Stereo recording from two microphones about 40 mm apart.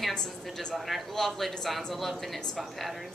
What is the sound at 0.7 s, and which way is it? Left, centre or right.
A woman's voice, centre.